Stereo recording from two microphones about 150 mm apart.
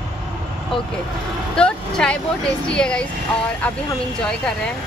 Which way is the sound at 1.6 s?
5° left (ahead or behind).